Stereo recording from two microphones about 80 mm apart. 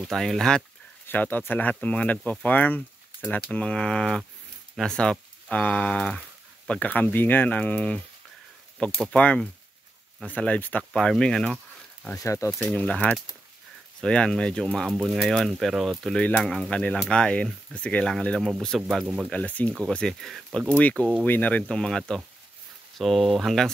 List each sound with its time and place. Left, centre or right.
0.0 s speech: centre
1.0 s speech: left
6.7 s speech: centre
10.8 s speech: centre
12.2 s speech: left
12.6 s speech: centre
16.7 s speech: centre
19.3 s speech: centre
19.9 s speech: centre
20.9 s speech: centre
21.6 s speech: centre